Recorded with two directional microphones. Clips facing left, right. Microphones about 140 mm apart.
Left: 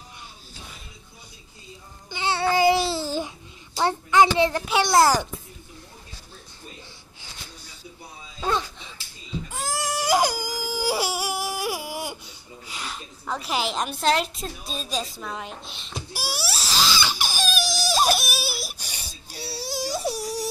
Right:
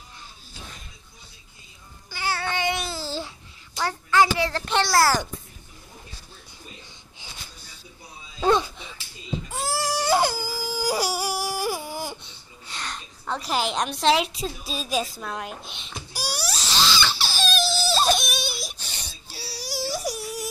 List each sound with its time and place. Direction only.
2.0 s babbling: 25° left (ahead or behind)
3.0 s babbling: 15° left (ahead or behind)
3.7 s a sound: 20° left (ahead or behind)
4.8 s a child's voice: 20° left (ahead or behind)
8.5 s a sound: 10° right (ahead or behind)
10.0 s baby cry: 15° left (ahead or behind)
13.5 s a woman's voice: centre (ahead or behind)
16.3 s wail: 5° left (ahead or behind)
16.7 s crying: 10° left (ahead or behind)
19.4 s wail: 25° left (ahead or behind)
20.0 s a sound: 35° left (ahead or behind)